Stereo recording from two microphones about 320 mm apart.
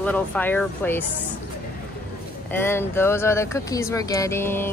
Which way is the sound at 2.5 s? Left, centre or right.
Centre.